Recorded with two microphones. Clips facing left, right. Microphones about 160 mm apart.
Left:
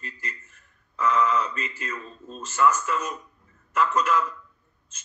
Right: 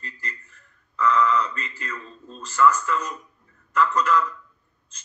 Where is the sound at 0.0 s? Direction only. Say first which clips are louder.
Even; 20° left (ahead or behind).